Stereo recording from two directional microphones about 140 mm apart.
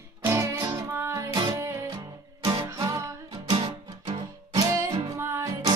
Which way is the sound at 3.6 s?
40° right (ahead or behind).